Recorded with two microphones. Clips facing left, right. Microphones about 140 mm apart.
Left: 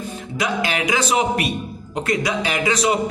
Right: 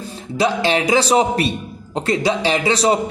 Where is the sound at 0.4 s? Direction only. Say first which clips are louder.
Right 5 dB; 30° right (ahead or behind).